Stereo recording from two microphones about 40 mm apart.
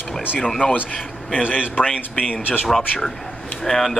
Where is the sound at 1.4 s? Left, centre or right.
Right.